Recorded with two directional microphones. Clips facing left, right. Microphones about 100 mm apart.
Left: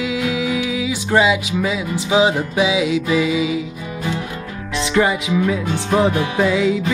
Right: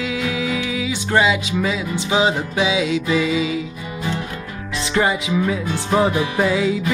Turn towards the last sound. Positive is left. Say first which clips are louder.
# left 1 dB
turn(degrees=-5)  # may be behind; listen again after turning